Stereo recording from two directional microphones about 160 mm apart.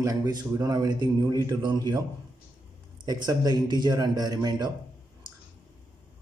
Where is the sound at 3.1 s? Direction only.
25° right (ahead or behind).